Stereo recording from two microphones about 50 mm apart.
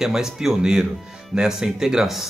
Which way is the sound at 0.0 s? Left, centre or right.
Centre.